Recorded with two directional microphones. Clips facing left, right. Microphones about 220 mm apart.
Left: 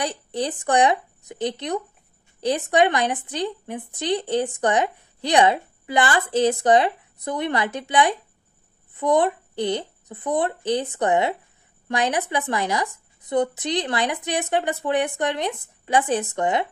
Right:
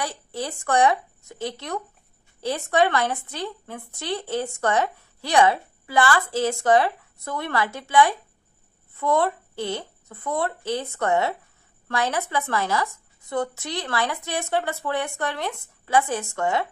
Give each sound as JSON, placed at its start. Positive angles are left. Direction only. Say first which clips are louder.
{"t": 0.0, "sound": "speech", "louder": "left 4 dB", "side_deg": 20}